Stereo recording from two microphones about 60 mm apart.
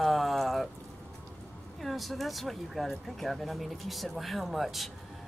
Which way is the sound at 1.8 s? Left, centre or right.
Centre.